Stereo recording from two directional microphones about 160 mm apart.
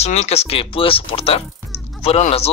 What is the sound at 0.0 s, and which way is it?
Speech, 40° left (ahead or behind).